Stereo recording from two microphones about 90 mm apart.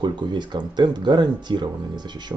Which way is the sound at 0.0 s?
60° right (ahead or behind).